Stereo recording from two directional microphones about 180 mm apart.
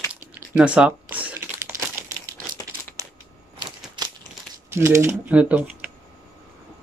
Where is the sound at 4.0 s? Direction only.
25° right (ahead or behind).